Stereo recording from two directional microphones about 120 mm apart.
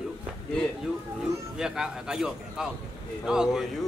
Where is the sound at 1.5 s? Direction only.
5° right (ahead or behind).